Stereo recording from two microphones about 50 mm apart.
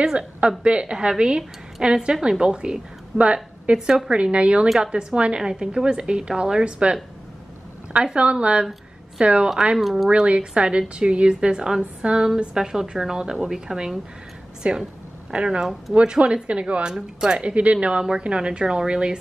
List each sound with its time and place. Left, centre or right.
0.4 s a woman's voice: right
4.6 s speech: centre
4.9 s a woman's voice: right
9.8 s speech: centre
10.0 s a woman's voice: right
14.6 s a woman's voice: right